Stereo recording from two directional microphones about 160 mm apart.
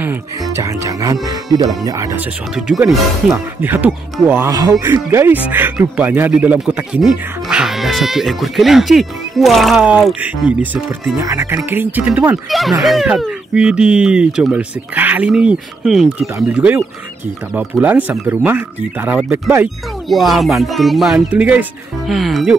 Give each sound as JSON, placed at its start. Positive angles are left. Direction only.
{"t": 0.0, "sound": "speech", "side_deg": -15}
{"t": 2.1, "sound": "speech", "side_deg": -5}
{"t": 16.3, "sound": "speech", "side_deg": -15}
{"t": 20.1, "sound": "speech", "side_deg": 0}